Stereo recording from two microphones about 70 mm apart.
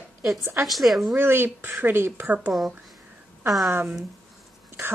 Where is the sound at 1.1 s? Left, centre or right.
Right.